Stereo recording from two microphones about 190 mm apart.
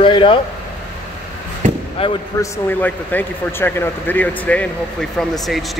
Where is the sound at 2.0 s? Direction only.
30° left (ahead or behind).